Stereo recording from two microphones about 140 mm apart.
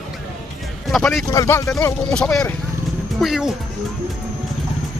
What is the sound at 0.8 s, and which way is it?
Speech, centre (ahead or behind).